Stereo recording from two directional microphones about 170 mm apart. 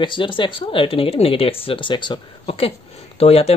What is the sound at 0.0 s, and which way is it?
Speech, 30° left (ahead or behind).